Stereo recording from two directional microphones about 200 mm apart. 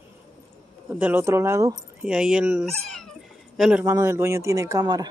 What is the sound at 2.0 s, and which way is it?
Speech, 5° right (ahead or behind).